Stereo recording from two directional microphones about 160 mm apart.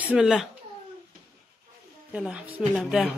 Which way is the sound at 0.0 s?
5° right (ahead or behind).